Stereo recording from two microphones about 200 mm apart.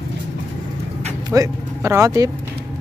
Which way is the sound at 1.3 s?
15° right (ahead or behind).